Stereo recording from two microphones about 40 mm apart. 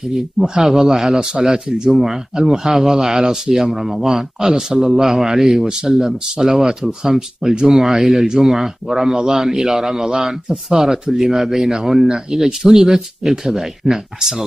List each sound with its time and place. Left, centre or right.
0.1 s speech: centre
7.7 s speech: centre